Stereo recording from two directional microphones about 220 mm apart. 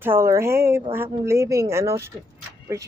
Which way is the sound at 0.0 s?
10° right (ahead or behind).